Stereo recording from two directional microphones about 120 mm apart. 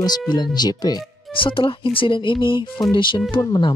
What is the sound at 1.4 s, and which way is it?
Speech, 45° left (ahead or behind).